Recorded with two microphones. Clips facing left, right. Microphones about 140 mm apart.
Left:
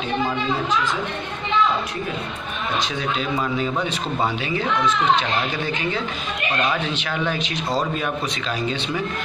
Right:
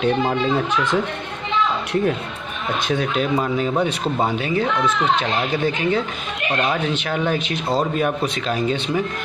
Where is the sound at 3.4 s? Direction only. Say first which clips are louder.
Right 3 dB; 35° right (ahead or behind).